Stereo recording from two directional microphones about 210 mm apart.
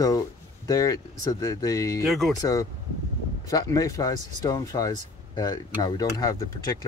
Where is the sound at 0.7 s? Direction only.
15° left (ahead or behind).